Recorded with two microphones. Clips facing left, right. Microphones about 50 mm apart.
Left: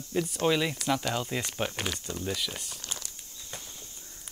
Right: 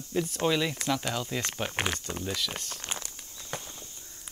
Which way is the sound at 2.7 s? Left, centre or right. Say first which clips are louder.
Right 3 dB; right.